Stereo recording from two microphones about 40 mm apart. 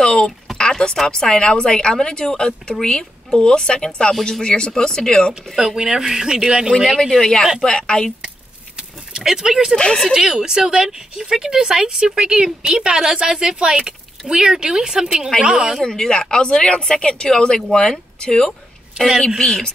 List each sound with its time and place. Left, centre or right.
0.0 s a sound: centre
1.0 s a woman's voice: centre
5.6 s a woman's voice: centre
6.7 s a woman's voice: centre
8.7 s a woman's voice: centre
15.8 s speech: centre